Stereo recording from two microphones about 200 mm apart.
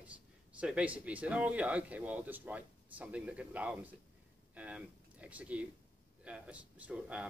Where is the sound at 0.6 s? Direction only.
5° right (ahead or behind).